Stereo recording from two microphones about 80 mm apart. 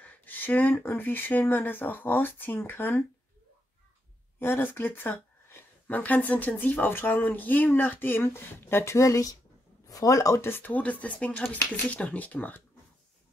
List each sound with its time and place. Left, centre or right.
0.0 s speech: left
4.4 s speech: left
10.4 s speech: left